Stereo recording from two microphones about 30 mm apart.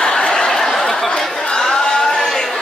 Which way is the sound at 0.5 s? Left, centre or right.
Centre.